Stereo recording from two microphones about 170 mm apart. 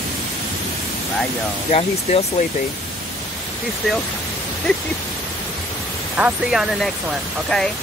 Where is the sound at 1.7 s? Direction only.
40° left (ahead or behind).